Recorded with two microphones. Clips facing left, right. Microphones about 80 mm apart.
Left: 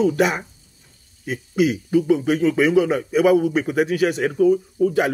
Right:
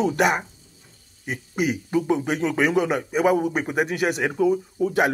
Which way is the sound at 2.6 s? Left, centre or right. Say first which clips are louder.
Left 3 dB; right.